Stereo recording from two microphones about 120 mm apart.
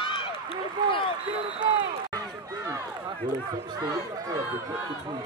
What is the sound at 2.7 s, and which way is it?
Run, 30° right (ahead or behind).